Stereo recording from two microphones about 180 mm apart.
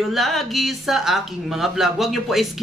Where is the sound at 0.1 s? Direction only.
Centre (ahead or behind).